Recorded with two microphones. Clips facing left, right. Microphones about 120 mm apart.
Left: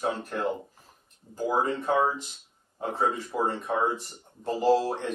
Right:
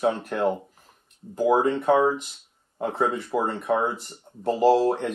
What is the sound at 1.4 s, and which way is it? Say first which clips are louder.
Speech: right 6 dB; 70° right (ahead or behind).